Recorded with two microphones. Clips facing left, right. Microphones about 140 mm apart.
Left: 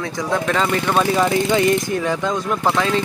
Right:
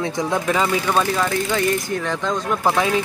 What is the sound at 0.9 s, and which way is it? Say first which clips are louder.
Speech: left 3 dB; 20° left (ahead or behind).